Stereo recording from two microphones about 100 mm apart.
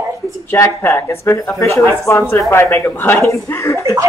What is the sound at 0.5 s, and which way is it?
Speech, 25° left (ahead or behind).